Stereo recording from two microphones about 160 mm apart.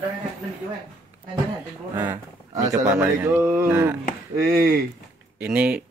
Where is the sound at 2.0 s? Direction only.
15° right (ahead or behind).